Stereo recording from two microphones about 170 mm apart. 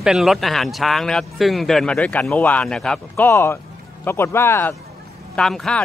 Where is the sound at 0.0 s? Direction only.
Centre (ahead or behind); by 4.7 s 15° left (ahead or behind).